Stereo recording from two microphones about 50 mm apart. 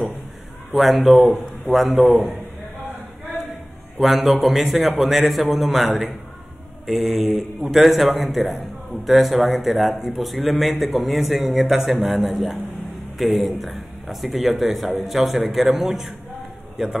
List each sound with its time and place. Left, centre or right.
0.7 s a man's voice: centre
4.0 s a man's voice: centre